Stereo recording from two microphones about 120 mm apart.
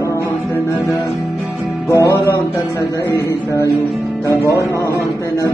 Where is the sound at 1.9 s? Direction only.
25° left (ahead or behind).